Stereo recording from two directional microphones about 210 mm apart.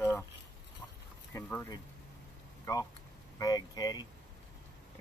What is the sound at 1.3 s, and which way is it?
Speech, 15° left (ahead or behind).